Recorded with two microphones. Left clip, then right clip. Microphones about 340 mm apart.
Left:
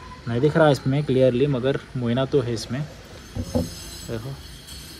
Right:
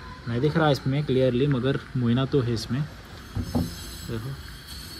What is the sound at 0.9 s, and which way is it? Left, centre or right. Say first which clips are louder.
Speech: left 3 dB; left.